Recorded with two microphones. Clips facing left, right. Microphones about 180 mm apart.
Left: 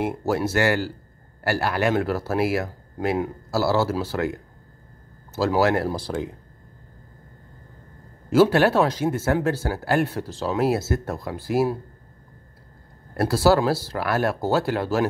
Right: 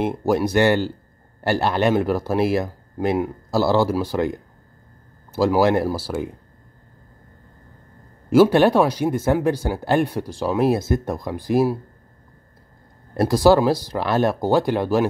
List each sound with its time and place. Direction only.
0.0 s speech: 15° right (ahead or behind)
5.9 s speech: 5° right (ahead or behind)
8.3 s speech: 15° right (ahead or behind)
13.1 s speech: 15° right (ahead or behind)